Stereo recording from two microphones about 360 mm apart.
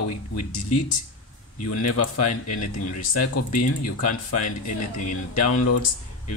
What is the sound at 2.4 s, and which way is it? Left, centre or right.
Speech, left.